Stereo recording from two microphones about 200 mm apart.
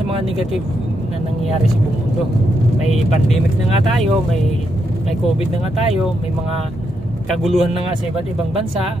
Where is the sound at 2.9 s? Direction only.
35° left (ahead or behind).